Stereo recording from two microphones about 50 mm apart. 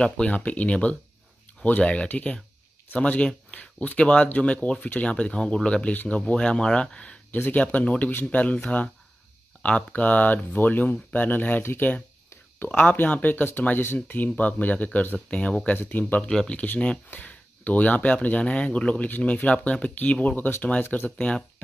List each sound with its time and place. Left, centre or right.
0.0 s speech: left
4.7 s speech: left
5.1 s speech: left
7.2 s speech: left
9.6 s speech: left
11.6 s speech: left
12.5 s speech: left
15.7 s speech: left
16.2 s speech: centre
17.1 s speech: left
20.4 s speech: left
20.9 s speech: left